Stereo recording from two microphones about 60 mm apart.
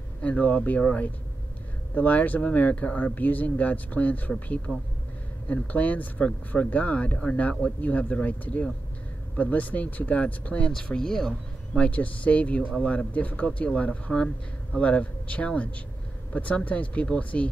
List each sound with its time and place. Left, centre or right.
0.2 s speech: left
4.7 s speech: centre
10.7 s speech: centre
11.8 s speech: left